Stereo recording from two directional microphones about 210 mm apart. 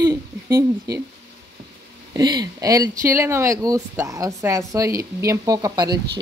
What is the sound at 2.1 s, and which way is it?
Speech, 20° right (ahead or behind).